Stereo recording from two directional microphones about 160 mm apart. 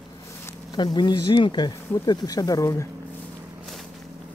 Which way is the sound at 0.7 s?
30° left (ahead or behind).